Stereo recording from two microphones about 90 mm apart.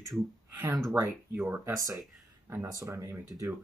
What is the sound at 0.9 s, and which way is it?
Speech, 25° right (ahead or behind).